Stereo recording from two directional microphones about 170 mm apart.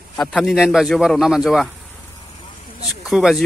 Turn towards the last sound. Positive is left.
turn(degrees=0)  # may be behind; listen again after turning